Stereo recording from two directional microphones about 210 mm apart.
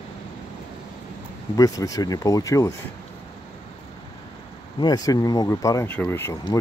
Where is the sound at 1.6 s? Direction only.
15° left (ahead or behind).